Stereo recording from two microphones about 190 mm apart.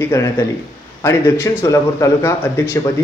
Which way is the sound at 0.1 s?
15° left (ahead or behind).